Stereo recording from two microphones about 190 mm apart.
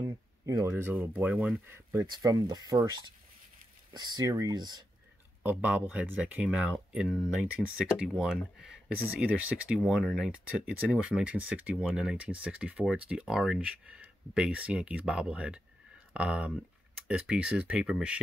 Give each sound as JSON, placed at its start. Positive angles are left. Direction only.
{"t": 0.0, "sound": "speech", "side_deg": -20}
{"t": 3.9, "sound": "speech", "side_deg": -20}
{"t": 5.4, "sound": "speech", "side_deg": -10}